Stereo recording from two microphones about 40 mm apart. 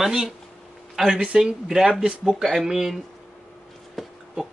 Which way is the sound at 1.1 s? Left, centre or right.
Right.